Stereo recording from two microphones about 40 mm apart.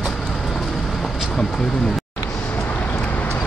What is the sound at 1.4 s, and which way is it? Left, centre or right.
Speech, centre.